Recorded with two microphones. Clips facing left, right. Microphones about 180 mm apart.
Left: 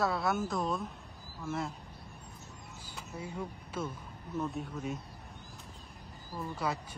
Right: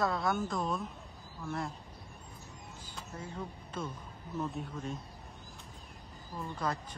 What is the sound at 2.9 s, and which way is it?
Speech, 10° left (ahead or behind).